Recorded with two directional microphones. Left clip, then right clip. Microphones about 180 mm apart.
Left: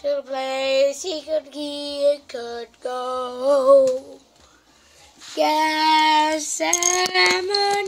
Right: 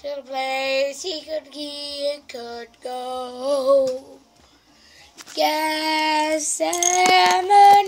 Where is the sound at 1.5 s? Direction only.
35° right (ahead or behind).